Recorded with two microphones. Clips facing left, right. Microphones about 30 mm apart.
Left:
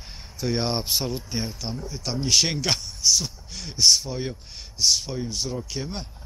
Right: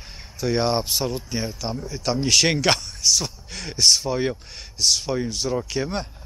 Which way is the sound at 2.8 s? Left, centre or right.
Centre.